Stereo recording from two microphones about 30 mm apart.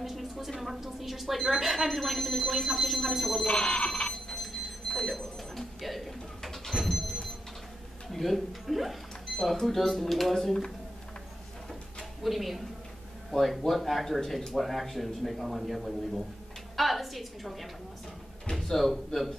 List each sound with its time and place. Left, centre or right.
0.0 s a sound: centre
0.5 s speech: centre
3.4 s speech: left
4.1 s a sound: centre
8.1 s speech: centre
9.4 s speech: centre
10.4 s speech: centre
12.2 s speech: centre
18.5 s speech: centre